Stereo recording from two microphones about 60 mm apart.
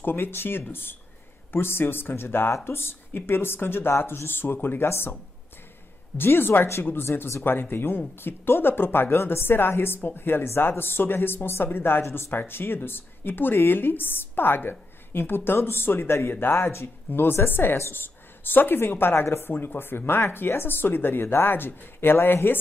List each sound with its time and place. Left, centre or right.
0.0 s speech: left
6.1 s speech: left
7.2 s speech: left
7.5 s speech: left